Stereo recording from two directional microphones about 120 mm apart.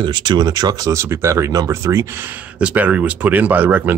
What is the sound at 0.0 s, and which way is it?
Speech, 40° right (ahead or behind).